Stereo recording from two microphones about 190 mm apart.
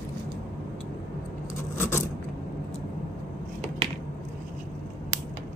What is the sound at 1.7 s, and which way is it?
Coin, 10° left (ahead or behind).